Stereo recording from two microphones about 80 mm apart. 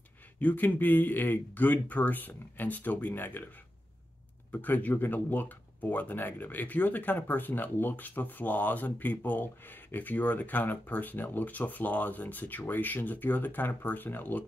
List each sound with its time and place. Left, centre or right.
0.4 s speech: left
4.5 s speech: left